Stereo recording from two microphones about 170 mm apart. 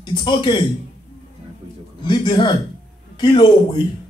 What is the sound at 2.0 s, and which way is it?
A man's voice, 25° left (ahead or behind).